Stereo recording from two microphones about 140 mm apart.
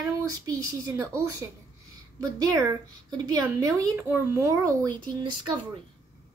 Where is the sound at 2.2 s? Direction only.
25° right (ahead or behind).